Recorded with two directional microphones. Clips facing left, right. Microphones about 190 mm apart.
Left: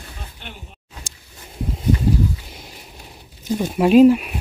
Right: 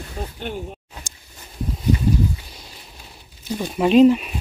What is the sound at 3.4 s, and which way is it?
Speech, 10° left (ahead or behind).